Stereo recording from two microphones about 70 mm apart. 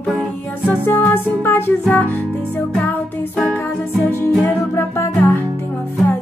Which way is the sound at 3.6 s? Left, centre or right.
Left.